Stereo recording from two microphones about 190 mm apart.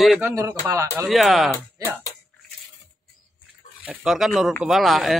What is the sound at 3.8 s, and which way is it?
A man's voice, 5° right (ahead or behind).